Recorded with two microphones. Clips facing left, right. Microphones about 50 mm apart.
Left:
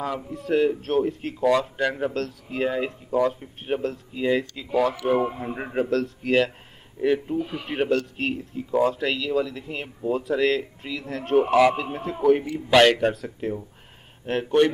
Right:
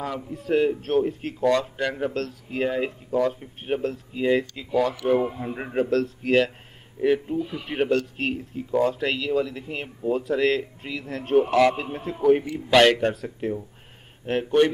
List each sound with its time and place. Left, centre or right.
0.5 s a man's voice: centre
7.3 s speech: left
7.6 s a man's voice: centre